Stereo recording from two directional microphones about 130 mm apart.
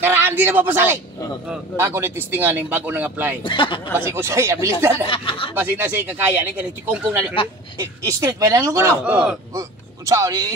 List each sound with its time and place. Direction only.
0.0 s speech: 15° right (ahead or behind)
3.4 s a man's voice: 40° left (ahead or behind)
3.9 s speech: 20° right (ahead or behind)
5.0 s speech: 40° left (ahead or behind)
5.6 s speech: 15° right (ahead or behind)
8.0 s speech: 25° right (ahead or behind)
9.0 s speech: 5° right (ahead or behind)
9.5 s speech: 25° right (ahead or behind)